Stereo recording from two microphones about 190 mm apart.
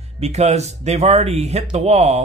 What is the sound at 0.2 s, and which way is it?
Speech, 35° right (ahead or behind).